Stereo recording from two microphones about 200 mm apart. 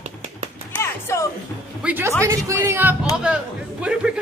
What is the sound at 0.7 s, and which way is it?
Music, 15° left (ahead or behind).